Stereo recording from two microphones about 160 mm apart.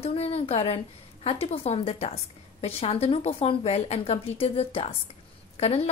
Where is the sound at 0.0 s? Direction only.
40° left (ahead or behind).